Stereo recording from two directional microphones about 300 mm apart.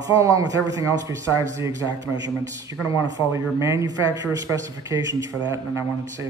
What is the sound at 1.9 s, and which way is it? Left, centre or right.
Speech, right.